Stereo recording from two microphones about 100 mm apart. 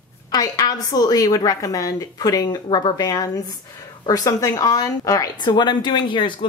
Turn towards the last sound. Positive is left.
turn(degrees=55)  # may be behind; listen again after turning